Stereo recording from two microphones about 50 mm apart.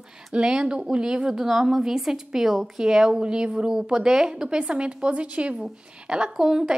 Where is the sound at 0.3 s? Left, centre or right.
Centre.